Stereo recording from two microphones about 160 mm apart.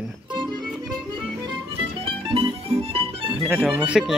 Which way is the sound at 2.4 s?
35° right (ahead or behind).